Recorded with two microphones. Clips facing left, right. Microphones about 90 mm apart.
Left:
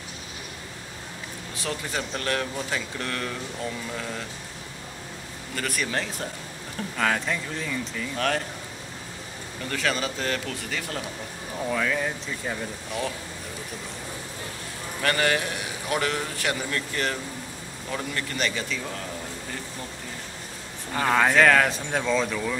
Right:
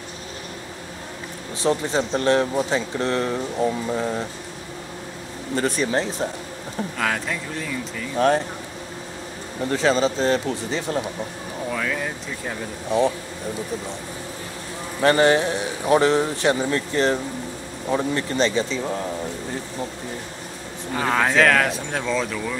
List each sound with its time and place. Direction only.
1.6 s speech: 25° right (ahead or behind)
5.5 s speech: 25° right (ahead or behind)
7.0 s speech: centre (ahead or behind)
8.2 s speech: 25° right (ahead or behind)
9.6 s speech: 25° right (ahead or behind)
11.7 s speech: centre (ahead or behind)
12.9 s speech: 25° right (ahead or behind)
15.0 s speech: 25° right (ahead or behind)
20.9 s speech: 5° right (ahead or behind)